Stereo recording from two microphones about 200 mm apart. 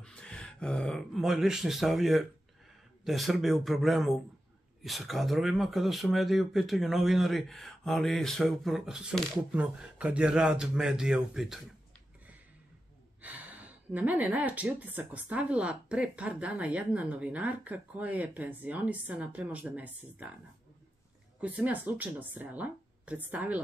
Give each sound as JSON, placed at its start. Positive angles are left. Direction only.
{"t": 0.0, "sound": "speech", "side_deg": 5}
{"t": 13.2, "sound": "speech", "side_deg": -5}
{"t": 21.4, "sound": "speech", "side_deg": -5}